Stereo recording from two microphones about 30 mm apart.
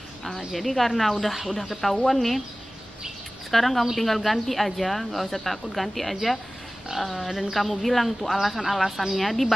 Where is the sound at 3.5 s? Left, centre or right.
Centre.